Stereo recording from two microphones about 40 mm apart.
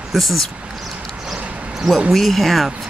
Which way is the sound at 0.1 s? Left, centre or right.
Centre.